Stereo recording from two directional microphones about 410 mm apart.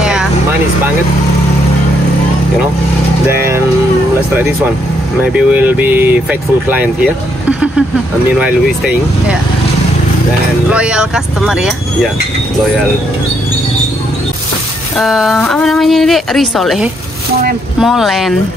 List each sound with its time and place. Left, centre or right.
0.0 s vehicle: centre
5.3 s speech: centre
7.4 s a sound: centre
8.4 s speech: centre
10.7 s speech: centre
15.0 s speech: centre